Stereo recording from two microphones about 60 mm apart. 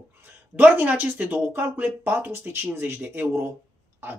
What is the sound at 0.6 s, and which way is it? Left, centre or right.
Speech, right.